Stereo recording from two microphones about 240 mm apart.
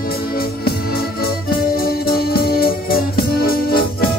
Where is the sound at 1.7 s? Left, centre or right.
Left.